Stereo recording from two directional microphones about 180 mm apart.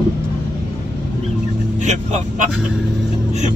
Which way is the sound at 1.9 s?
40° right (ahead or behind).